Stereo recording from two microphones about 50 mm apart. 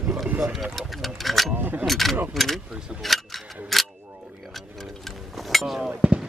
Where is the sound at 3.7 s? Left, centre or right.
Centre.